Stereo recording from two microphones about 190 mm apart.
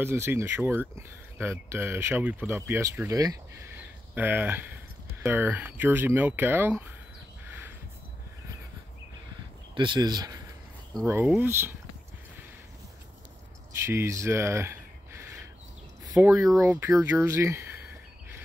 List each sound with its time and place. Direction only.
0.0 s speech: 10° right (ahead or behind)
9.8 s speech: 25° right (ahead or behind)
11.1 s speech: 10° right (ahead or behind)
13.8 s a sound: 15° right (ahead or behind)
16.1 s speech: 5° right (ahead or behind)